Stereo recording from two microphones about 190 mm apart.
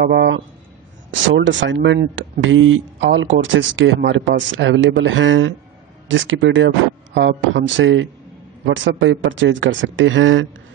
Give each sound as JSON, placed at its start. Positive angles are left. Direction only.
{"t": 0.0, "sound": "a man's voice", "side_deg": -65}
{"t": 1.1, "sound": "speech", "side_deg": -80}